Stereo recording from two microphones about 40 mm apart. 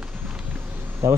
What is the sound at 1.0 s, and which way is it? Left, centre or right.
Speech, right.